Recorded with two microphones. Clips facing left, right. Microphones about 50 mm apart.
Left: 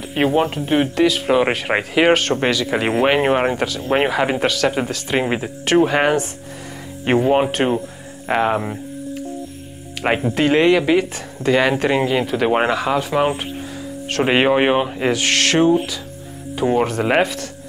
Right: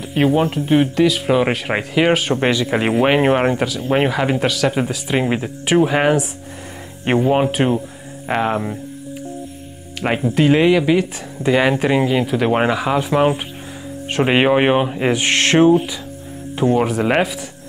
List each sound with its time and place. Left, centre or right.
0.0 s speech: centre
2.2 s speech: centre
10.0 s speech: centre
11.4 s speech: centre
12.0 s speech: centre
15.1 s speech: right
16.8 s speech: centre